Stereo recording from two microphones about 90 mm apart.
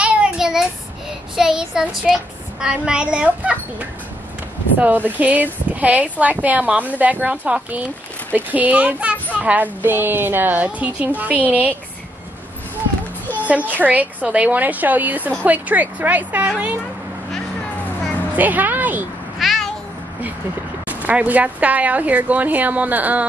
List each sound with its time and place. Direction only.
0.0 s child singing: 15° right (ahead or behind)
2.1 s a woman's voice: 5° right (ahead or behind)
4.7 s a woman's voice: 20° right (ahead or behind)
13.5 s a woman's voice: 15° right (ahead or behind)
18.3 s speech: 20° right (ahead or behind)
19.4 s meow: centre (ahead or behind)
20.9 s a woman's voice: 15° right (ahead or behind)